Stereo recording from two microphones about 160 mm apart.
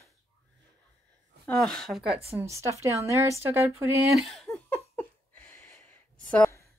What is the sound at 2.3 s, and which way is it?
Speech, 15° right (ahead or behind).